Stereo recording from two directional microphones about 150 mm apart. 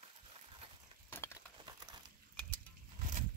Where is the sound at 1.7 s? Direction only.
30° right (ahead or behind).